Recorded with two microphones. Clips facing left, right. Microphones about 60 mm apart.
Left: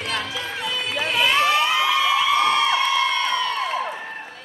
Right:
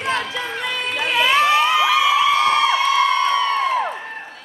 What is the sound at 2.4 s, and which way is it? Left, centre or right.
Crowd, centre.